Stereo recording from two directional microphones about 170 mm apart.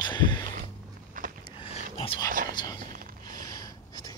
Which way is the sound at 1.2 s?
50° right (ahead or behind).